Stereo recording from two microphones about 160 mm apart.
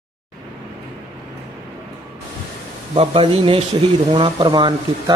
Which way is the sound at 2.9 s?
35° right (ahead or behind).